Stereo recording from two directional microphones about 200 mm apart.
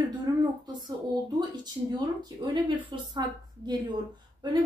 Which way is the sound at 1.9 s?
20° right (ahead or behind).